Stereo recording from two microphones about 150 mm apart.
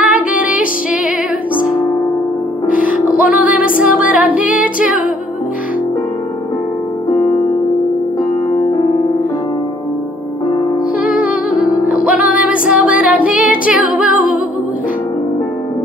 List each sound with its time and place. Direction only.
0.0 s music: 10° right (ahead or behind)
2.7 s music: 65° left (ahead or behind)
3.1 s music: 10° right (ahead or behind)
11.1 s music: 70° left (ahead or behind)
11.6 s music: 10° right (ahead or behind)